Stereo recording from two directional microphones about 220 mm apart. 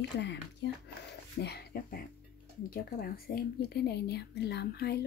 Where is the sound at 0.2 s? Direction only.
50° left (ahead or behind).